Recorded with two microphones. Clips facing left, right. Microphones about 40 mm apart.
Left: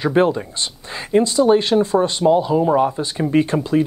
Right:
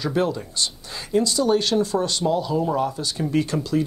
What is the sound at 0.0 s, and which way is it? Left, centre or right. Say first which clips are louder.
Speech: left 7 dB; left.